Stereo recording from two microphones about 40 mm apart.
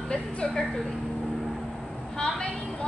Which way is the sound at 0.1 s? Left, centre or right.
Left.